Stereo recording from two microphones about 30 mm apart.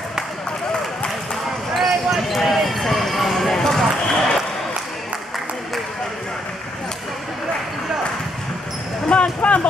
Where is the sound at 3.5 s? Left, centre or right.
Centre.